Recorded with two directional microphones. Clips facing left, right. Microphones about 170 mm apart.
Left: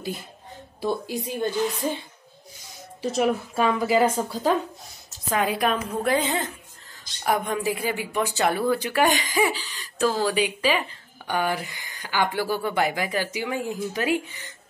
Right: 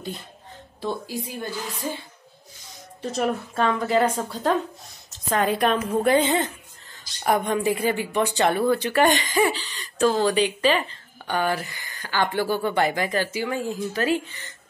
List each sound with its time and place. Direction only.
0.7 s a woman's voice: 15° left (ahead or behind)
3.0 s a woman's voice: centre (ahead or behind)